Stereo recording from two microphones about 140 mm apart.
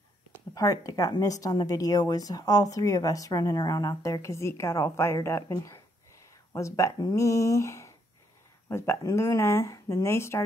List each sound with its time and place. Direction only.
0.6 s a woman's voice: 25° left (ahead or behind)